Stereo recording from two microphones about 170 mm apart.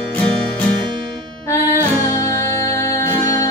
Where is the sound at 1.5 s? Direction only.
20° left (ahead or behind).